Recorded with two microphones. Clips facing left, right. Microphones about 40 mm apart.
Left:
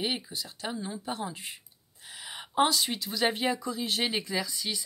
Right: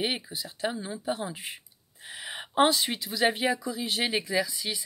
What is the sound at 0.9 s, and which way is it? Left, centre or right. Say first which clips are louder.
Speech: right 4 dB; centre.